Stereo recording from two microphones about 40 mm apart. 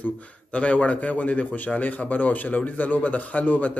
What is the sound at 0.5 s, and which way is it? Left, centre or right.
Speech, left.